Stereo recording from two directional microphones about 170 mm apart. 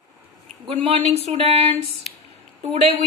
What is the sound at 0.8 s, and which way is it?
Speech, 40° right (ahead or behind).